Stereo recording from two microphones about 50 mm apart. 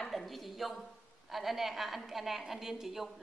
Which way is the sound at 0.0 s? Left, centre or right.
Centre.